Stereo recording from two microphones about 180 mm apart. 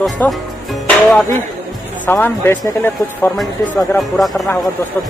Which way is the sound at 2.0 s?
10° left (ahead or behind).